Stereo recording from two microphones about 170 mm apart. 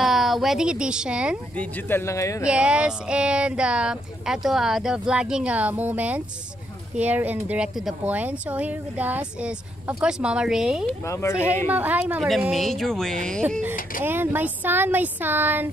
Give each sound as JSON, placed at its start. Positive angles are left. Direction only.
{"t": 0.0, "sound": "speech", "side_deg": 0}
{"t": 1.6, "sound": "speech", "side_deg": 15}
{"t": 2.4, "sound": "a sound", "side_deg": -5}
{"t": 7.0, "sound": "speech", "side_deg": -10}
{"t": 10.9, "sound": "speech", "side_deg": 15}
{"t": 11.7, "sound": "speech", "side_deg": -10}
{"t": 12.4, "sound": "a sound", "side_deg": 0}
{"t": 14.0, "sound": "speech", "side_deg": -10}